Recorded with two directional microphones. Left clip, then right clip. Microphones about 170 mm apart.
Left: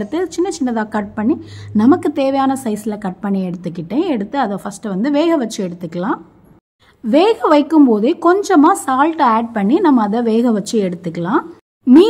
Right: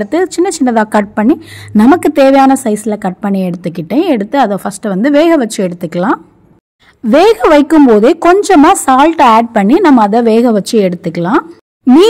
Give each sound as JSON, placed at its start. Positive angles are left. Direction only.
{"t": 0.0, "sound": "a woman's voice", "side_deg": -45}